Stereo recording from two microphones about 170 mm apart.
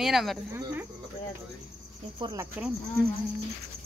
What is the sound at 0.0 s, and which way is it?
Speech, centre (ahead or behind).